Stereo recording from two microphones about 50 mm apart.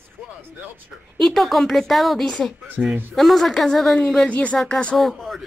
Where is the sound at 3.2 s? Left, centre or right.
Centre.